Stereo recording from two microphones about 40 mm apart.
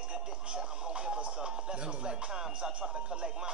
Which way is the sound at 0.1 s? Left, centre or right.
Centre.